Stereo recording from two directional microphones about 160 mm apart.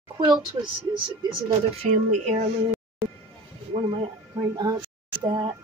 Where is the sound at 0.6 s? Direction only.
25° right (ahead or behind).